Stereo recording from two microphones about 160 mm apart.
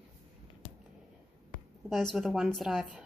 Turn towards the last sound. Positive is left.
turn(degrees=0)  # may be behind; listen again after turning